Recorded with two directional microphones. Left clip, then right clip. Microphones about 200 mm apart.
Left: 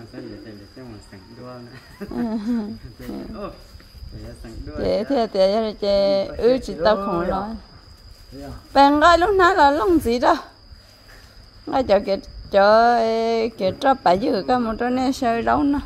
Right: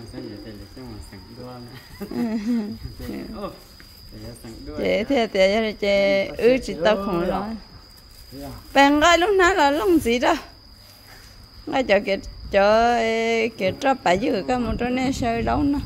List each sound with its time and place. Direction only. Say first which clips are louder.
1.4 s speech: left 1 dB; 10° right (ahead or behind)
4.8 s speech: even; 5° right (ahead or behind)
8.7 s speech: left 2 dB; centre (ahead or behind)
11.6 s speech: left 1 dB; centre (ahead or behind)